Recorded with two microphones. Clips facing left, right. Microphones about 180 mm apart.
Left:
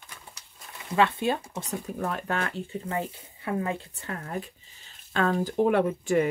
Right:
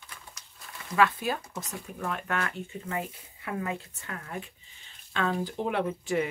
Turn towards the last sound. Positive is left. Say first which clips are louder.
# left 5 dB
turn(degrees=45)  # may be behind; listen again after turning